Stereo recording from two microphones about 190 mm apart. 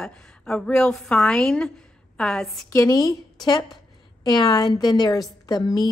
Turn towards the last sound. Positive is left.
turn(degrees=20)  # may be behind; listen again after turning